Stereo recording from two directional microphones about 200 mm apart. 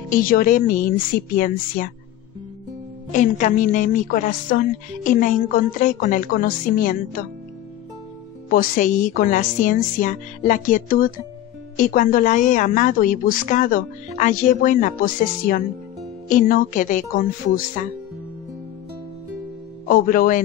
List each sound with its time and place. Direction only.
0.1 s a woman's voice: 45° left (ahead or behind)
3.1 s a woman's voice: 40° left (ahead or behind)
8.5 s a woman's voice: 40° left (ahead or behind)
19.9 s a woman's voice: 45° left (ahead or behind)